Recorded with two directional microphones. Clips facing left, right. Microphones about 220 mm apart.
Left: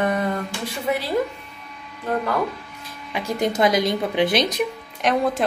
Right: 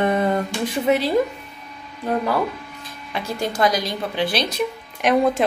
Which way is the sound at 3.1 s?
15° left (ahead or behind).